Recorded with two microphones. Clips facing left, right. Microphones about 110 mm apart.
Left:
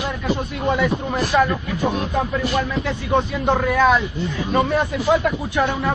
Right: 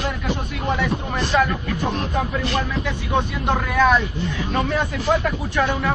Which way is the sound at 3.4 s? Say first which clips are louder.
Left 2 dB; centre (ahead or behind).